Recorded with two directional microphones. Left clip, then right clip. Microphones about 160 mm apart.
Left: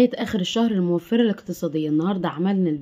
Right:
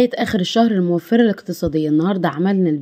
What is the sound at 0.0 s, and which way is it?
Speech, 45° right (ahead or behind).